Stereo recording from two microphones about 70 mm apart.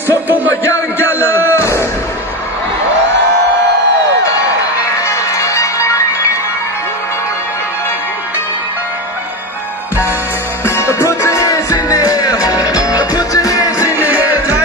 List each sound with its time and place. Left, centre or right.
0.3 s a man's voice: right
1.4 s music: left
5.0 s music: left
10.6 s music: left
11.7 s music: left
13.9 s music: right